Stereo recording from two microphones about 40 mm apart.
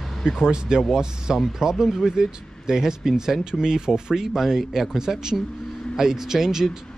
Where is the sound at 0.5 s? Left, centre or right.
Centre.